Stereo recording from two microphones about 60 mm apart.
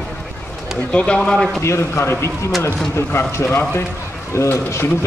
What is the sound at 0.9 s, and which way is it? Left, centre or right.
Speech, centre.